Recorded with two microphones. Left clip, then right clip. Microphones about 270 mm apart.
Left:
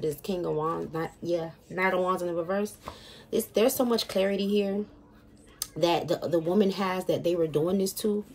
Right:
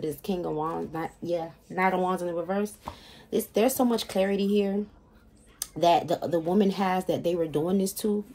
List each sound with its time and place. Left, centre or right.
0.0 s speech: right